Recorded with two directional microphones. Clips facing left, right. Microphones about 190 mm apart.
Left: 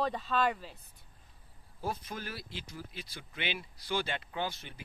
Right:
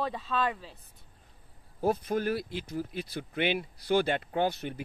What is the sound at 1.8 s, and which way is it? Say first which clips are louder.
Speech: right 11 dB; 50° right (ahead or behind).